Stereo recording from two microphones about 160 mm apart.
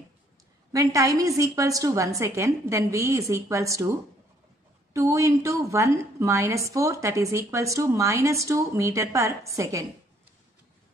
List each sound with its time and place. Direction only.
0.7 s a woman's voice: 20° right (ahead or behind)
4.9 s a woman's voice: 20° right (ahead or behind)